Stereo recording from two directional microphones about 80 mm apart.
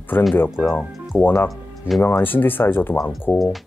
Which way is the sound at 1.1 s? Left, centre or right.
Left.